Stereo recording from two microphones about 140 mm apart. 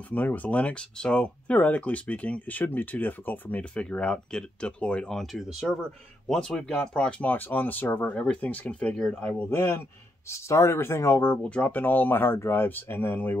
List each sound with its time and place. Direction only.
0.1 s speech: 10° left (ahead or behind)